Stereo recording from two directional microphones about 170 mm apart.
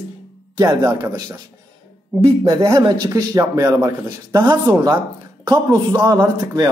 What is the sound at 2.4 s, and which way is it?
A man's voice, 20° right (ahead or behind).